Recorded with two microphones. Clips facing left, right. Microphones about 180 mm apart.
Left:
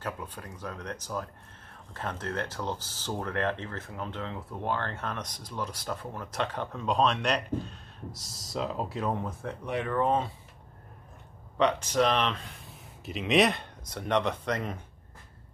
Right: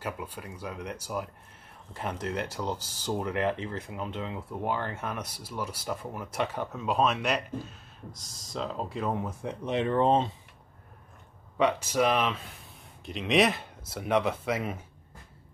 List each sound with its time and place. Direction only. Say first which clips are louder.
0.0 s speech: right 1 dB; 10° right (ahead or behind); by 10.3 s 25° right (ahead or behind)
11.5 s speech: even; 10° right (ahead or behind)